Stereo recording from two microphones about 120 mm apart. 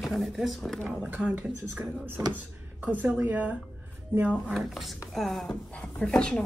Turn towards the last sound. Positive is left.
turn(degrees=10)  # may be behind; listen again after turning